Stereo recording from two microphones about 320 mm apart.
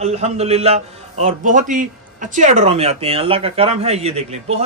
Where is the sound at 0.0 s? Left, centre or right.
Centre.